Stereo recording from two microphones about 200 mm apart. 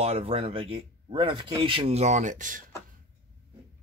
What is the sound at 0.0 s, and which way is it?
Speech, 30° right (ahead or behind).